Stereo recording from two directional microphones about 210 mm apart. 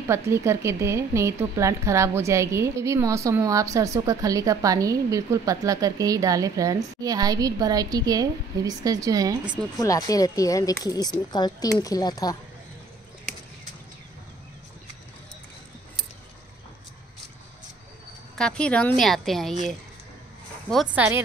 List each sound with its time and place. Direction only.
0.1 s a woman's voice: 15° right (ahead or behind)
9.8 s speech: 15° left (ahead or behind)
18.3 s a woman's voice: 5° left (ahead or behind)
20.7 s a woman's voice: 5° right (ahead or behind)